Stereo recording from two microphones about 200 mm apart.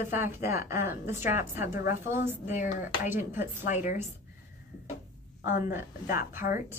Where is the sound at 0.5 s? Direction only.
15° right (ahead or behind).